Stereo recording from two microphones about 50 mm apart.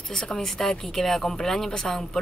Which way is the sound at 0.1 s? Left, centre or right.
Centre.